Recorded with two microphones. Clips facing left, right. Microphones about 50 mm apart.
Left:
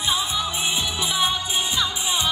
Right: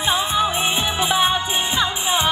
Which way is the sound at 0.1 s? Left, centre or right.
Right.